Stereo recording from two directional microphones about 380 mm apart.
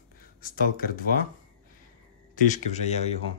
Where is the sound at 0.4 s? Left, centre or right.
Left.